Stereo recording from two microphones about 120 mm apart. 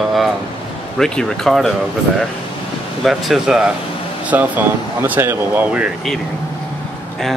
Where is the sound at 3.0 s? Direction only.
Centre (ahead or behind).